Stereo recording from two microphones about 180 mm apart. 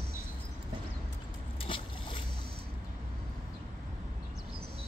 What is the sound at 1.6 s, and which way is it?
Boat, 30° left (ahead or behind).